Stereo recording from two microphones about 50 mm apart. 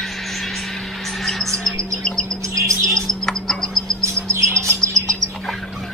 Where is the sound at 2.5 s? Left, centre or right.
Right.